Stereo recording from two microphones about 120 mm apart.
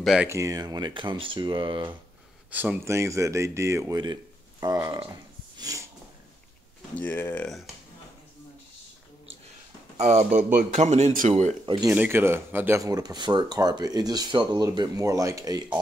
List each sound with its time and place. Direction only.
0.0 s speech: centre (ahead or behind)
0.3 s speech: 30° right (ahead or behind); by 2.0 s 45° right (ahead or behind)
2.5 s speech: 15° right (ahead or behind)
4.0 s a sound: 35° right (ahead or behind)
4.8 s speech: 40° right (ahead or behind)
5.6 s snort: 30° right (ahead or behind)
7.0 s speech: 15° left (ahead or behind)
7.4 s speech: centre (ahead or behind)
9.9 s speech: 65° right (ahead or behind); by 11.5 s 85° right
11.6 s speech: 40° right (ahead or behind)
11.9 s speech: 15° right (ahead or behind)
12.8 s speech: 30° right (ahead or behind)